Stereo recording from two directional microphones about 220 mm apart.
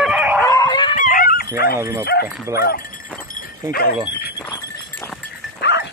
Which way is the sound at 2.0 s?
45° left (ahead or behind).